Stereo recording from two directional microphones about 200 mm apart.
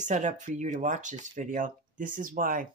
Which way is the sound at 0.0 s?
35° right (ahead or behind).